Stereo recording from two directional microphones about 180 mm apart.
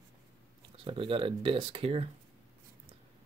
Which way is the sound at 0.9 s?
30° right (ahead or behind).